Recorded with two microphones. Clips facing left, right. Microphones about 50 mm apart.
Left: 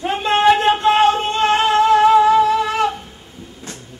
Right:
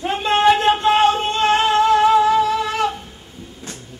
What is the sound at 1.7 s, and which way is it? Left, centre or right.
Music, centre.